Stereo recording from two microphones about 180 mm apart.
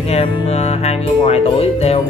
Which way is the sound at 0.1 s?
35° left (ahead or behind).